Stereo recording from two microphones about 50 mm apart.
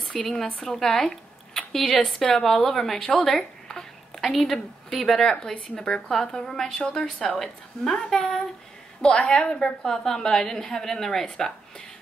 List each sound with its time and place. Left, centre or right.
0.1 s a woman's voice: centre
5.3 s a woman's voice: centre
9.0 s a woman's voice: centre